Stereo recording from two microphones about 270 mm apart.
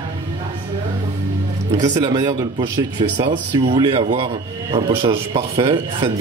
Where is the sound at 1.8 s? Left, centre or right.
Centre.